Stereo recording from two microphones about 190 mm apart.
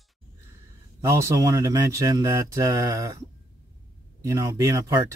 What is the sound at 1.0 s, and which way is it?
Speech, 15° right (ahead or behind).